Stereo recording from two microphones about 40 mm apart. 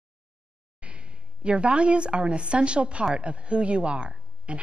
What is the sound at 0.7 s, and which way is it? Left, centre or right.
A woman's voice, right.